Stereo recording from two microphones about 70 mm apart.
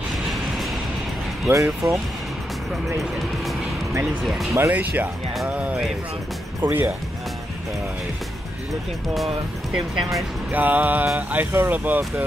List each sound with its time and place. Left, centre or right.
0.1 s vehicle: centre
1.5 s speech: right
4.6 s speech: right
6.6 s speech: right
9.7 s speech: centre
10.5 s speech: right